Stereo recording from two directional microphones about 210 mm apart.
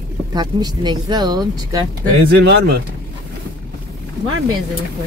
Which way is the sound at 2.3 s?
50° right (ahead or behind).